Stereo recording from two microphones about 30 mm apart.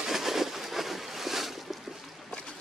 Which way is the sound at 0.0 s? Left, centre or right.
Centre.